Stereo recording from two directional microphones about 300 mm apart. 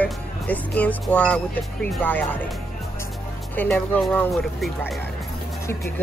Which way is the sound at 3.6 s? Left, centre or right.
Centre.